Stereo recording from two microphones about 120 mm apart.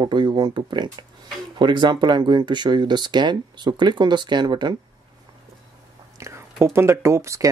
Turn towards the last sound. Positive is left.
turn(degrees=-25)  # may be behind; listen again after turning